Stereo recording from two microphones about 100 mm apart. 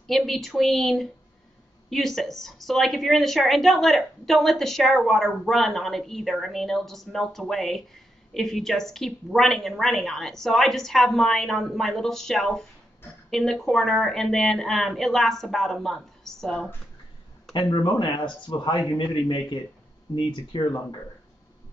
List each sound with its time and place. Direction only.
0.0 s a woman's voice: centre (ahead or behind)
17.7 s a man's voice: 45° left (ahead or behind)